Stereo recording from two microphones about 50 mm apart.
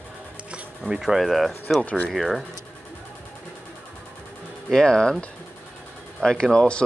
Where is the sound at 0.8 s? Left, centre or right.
Centre.